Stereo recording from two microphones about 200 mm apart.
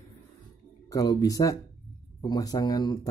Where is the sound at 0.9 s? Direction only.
20° left (ahead or behind).